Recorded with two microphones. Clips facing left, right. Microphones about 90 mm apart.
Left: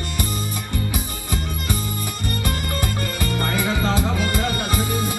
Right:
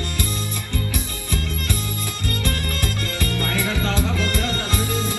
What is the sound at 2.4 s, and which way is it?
Music, 20° left (ahead or behind).